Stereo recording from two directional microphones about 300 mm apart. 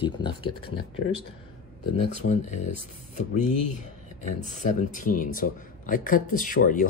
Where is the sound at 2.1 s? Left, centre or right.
Left.